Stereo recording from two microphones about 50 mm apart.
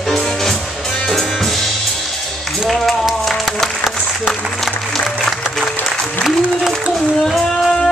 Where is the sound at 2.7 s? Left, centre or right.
Centre.